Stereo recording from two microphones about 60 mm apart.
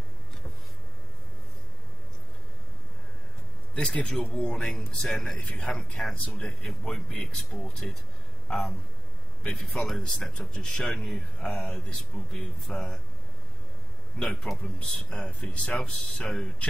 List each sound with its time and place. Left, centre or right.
3.7 s speech: centre
5.4 s speech: left
6.6 s a man's voice: centre
14.6 s speech: centre